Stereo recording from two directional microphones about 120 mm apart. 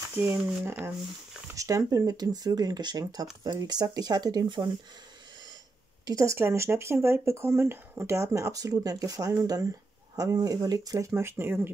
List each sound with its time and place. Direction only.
0.2 s speech: 20° right (ahead or behind); by 4.6 s 35° right (ahead or behind)
6.0 s speech: 25° right (ahead or behind)